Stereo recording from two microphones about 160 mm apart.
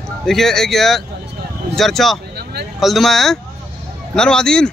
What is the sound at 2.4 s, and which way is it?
Vehicle, 90° right.